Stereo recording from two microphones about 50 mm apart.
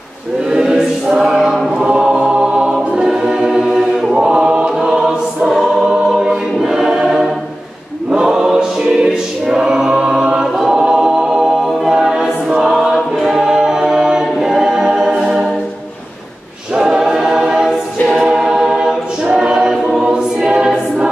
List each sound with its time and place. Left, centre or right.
0.5 s choir: centre
10.4 s a capella: centre
16.7 s choir: centre